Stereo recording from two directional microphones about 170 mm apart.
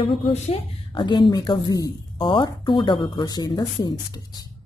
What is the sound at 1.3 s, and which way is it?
Speech, 25° left (ahead or behind).